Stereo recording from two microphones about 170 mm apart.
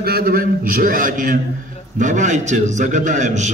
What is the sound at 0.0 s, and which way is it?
A man's voice, 65° right (ahead or behind).